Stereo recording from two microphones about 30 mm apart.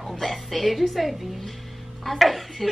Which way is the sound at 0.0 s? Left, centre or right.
Centre.